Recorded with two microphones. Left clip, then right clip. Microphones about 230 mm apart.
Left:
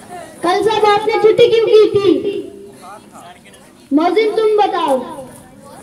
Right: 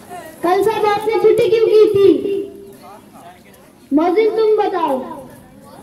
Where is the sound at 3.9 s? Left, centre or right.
Left.